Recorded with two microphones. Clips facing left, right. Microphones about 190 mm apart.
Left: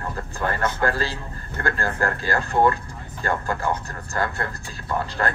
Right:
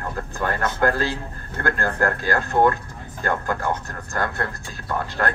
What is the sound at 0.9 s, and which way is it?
A man's voice, 55° right (ahead or behind).